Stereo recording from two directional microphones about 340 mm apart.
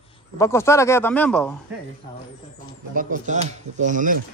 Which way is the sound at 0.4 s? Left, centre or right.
Centre.